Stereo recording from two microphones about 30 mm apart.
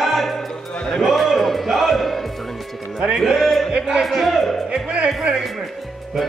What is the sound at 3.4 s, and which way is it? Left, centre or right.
Speech, centre.